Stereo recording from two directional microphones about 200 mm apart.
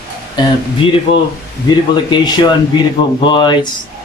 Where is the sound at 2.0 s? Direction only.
20° left (ahead or behind).